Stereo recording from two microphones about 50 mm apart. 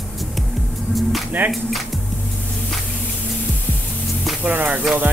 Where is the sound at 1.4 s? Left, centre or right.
Right.